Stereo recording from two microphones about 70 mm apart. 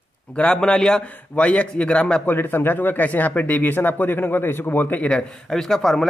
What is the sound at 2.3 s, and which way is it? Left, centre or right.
Speech, left.